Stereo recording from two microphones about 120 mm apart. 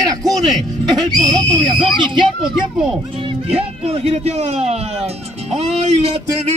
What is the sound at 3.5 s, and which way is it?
Speech, 55° right (ahead or behind).